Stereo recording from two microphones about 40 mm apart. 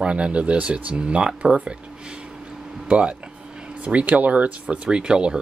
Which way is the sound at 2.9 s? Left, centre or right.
Right.